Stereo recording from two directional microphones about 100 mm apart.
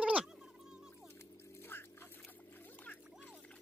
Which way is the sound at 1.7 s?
20° left (ahead or behind).